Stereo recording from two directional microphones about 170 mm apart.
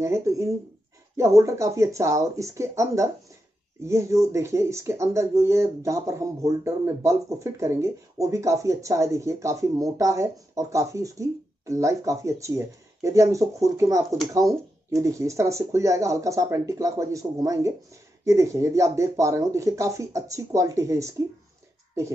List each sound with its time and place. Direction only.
0.0 s speech: 15° right (ahead or behind)